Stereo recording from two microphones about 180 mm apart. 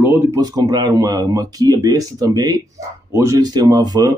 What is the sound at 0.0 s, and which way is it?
Speech, 10° right (ahead or behind).